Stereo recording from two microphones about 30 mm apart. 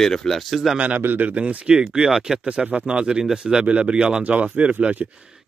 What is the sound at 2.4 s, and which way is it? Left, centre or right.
Speech, right.